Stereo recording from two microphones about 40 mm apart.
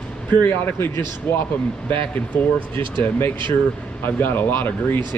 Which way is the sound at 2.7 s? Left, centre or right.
Left.